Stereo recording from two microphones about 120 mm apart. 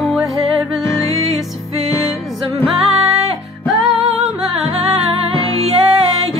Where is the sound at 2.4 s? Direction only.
50° right (ahead or behind).